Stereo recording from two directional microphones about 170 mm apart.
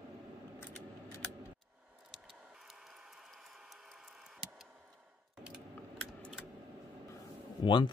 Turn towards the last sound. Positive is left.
turn(degrees=30)  # may be behind; listen again after turning